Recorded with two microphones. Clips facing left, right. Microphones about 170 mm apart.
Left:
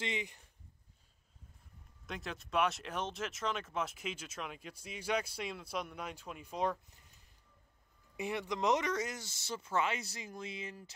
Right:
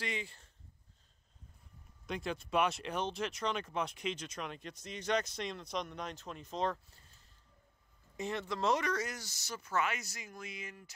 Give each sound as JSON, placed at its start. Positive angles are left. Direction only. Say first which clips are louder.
{"t": 0.0, "sound": "speech", "louder": "left 1 dB", "side_deg": 20}
{"t": 2.0, "sound": "speech", "louder": "right 5 dB", "side_deg": 0}